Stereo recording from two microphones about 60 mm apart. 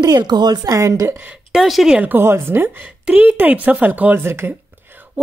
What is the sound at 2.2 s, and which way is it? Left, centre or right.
Speech, right.